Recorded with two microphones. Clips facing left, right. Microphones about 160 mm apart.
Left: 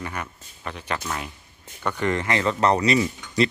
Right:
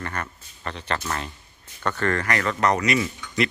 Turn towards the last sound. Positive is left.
turn(degrees=30)  # may be behind; listen again after turning